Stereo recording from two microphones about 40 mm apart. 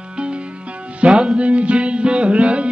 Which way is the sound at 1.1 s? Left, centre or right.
Centre.